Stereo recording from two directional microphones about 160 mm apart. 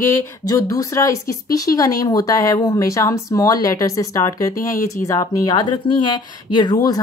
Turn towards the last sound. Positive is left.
turn(degrees=30)  # may be behind; listen again after turning